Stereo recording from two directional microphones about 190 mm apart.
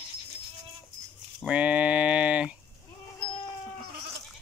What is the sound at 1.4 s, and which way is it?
Speech, 5° right (ahead or behind).